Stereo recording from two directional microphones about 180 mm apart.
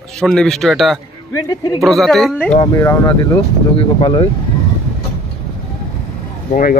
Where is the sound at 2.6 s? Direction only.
15° left (ahead or behind).